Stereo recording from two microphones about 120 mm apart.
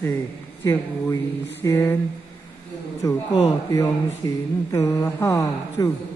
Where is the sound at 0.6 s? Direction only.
25° left (ahead or behind).